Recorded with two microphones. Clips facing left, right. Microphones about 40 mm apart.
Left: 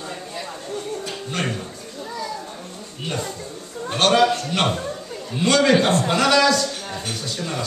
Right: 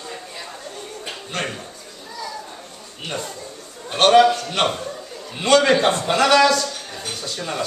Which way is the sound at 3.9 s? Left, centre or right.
Centre.